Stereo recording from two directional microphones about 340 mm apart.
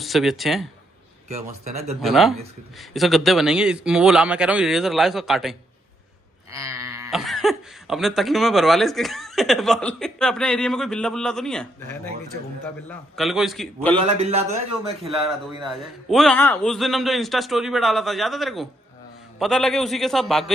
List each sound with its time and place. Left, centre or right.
0.0 s speech: centre
1.3 s speech: centre
2.0 s speech: centre
13.1 s speech: centre
14.0 s a man's voice: centre
15.0 s speech: centre